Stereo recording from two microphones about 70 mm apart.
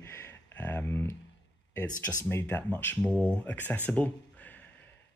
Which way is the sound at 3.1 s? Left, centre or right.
Centre.